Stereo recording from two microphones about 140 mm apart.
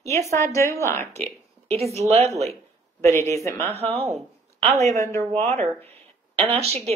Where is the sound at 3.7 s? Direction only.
45° right (ahead or behind).